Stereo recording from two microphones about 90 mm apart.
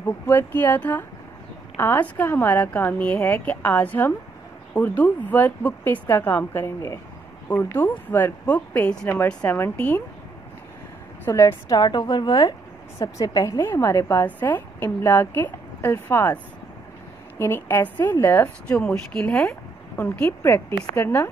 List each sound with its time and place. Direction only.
0.0 s a woman's voice: 20° left (ahead or behind)
11.2 s a woman's voice: 35° left (ahead or behind)
11.7 s a woman's voice: 50° left (ahead or behind)
13.5 s a woman's voice: 30° left (ahead or behind)
14.1 s a woman's voice: 20° left (ahead or behind)
17.4 s a woman's voice: 25° left (ahead or behind)
18.8 s a woman's voice: 10° left (ahead or behind)
20.0 s a woman's voice: 20° left (ahead or behind)